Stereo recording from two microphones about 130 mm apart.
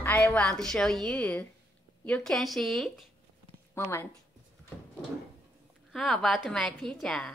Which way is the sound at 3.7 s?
15° left (ahead or behind).